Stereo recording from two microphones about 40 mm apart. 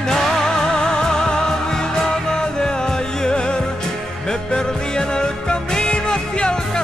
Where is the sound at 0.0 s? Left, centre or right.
Centre.